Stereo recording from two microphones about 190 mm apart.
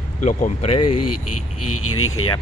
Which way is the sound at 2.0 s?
90° left.